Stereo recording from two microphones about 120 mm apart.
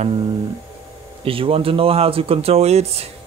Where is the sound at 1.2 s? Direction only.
50° right (ahead or behind).